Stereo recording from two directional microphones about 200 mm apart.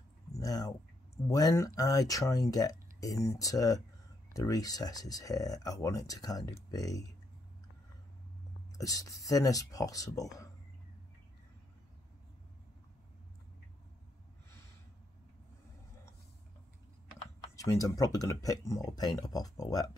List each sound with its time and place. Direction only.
0.4 s a sound: 20° left (ahead or behind)
1.2 s speech: 15° left (ahead or behind)
8.7 s speech: 15° left (ahead or behind)
17.6 s speech: 15° left (ahead or behind)